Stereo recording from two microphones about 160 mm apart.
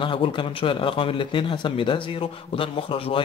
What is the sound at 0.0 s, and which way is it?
Speech, 30° left (ahead or behind).